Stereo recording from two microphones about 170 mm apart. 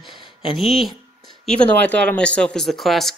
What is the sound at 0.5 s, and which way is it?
Speech, centre (ahead or behind).